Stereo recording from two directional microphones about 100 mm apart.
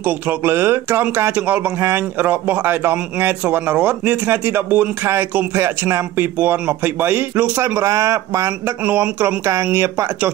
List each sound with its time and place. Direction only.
0.5 s a man's voice: 20° right (ahead or behind)
7.8 s speech: 30° right (ahead or behind)
8.8 s a man's voice: 20° right (ahead or behind)